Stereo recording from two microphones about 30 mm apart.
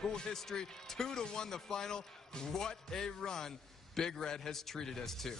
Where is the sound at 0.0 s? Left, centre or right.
Left.